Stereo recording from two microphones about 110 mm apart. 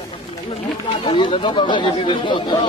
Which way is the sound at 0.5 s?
50° left (ahead or behind).